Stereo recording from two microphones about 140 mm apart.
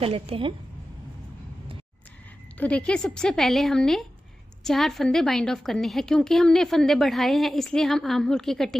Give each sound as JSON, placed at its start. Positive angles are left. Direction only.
{"t": 0.0, "sound": "a woman's voice", "side_deg": -45}
{"t": 2.5, "sound": "a woman's voice", "side_deg": 10}